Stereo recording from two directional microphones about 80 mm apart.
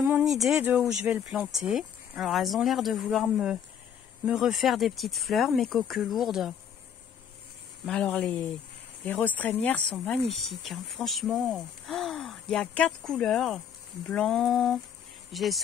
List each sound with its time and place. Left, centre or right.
0.2 s speech: centre
0.6 s speech: centre
1.5 s speech: centre
7.9 s speech: centre
10.0 s speech: centre